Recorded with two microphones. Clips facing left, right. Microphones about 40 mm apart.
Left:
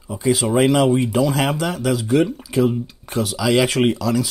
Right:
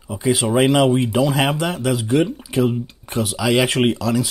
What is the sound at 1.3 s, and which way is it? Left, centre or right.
Speech, centre.